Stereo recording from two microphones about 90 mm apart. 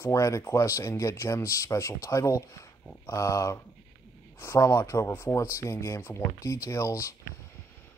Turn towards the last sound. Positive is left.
turn(degrees=35)  # may be behind; listen again after turning